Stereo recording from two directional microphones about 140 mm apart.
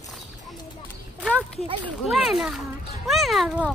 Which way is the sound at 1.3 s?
5° left (ahead or behind).